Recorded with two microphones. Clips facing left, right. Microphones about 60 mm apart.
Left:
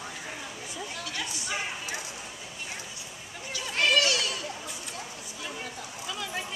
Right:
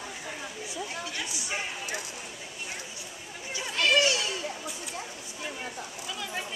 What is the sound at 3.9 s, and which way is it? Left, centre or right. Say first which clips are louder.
Children playing: right 2 dB; right.